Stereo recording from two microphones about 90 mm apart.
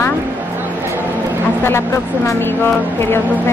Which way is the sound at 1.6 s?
30° left (ahead or behind).